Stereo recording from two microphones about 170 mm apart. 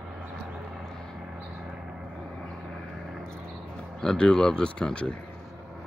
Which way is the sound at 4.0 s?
5° left (ahead or behind).